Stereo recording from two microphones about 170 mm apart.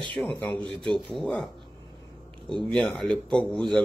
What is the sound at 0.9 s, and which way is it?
Speech, centre (ahead or behind).